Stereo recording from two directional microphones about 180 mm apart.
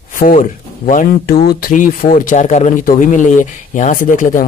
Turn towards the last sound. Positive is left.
turn(degrees=45)  # may be behind; listen again after turning